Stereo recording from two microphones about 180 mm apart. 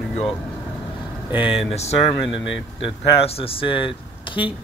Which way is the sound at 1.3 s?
5° right (ahead or behind).